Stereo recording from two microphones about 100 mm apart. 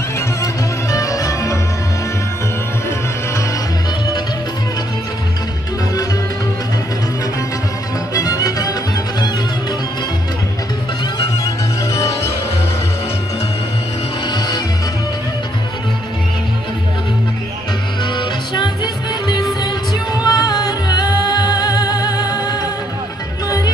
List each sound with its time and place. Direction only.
0.4 s music: 35° left (ahead or behind)
8.1 s music: 35° left (ahead or behind)
11.1 s music: 30° left (ahead or behind)
14.3 s music: 45° left (ahead or behind)
18.1 s music: 50° left (ahead or behind)
20.2 s music: 40° left (ahead or behind)